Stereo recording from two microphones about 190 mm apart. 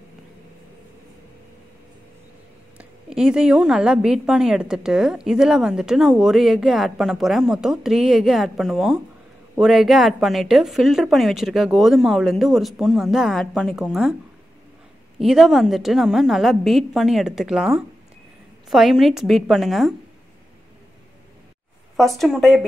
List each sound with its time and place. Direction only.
2.8 s a woman's voice: 5° right (ahead or behind)
15.1 s a woman's voice: centre (ahead or behind)
21.9 s a woman's voice: centre (ahead or behind)